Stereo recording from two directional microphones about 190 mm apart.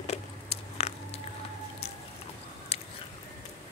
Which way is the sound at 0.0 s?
35° left (ahead or behind).